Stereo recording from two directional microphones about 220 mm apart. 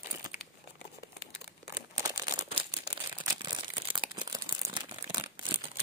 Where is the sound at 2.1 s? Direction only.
20° right (ahead or behind).